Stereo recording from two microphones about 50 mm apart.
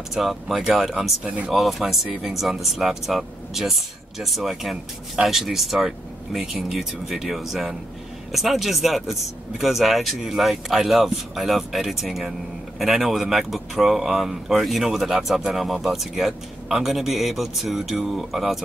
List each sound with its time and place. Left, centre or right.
0.1 s speech: centre
1.2 s speech: right
1.5 s speech: centre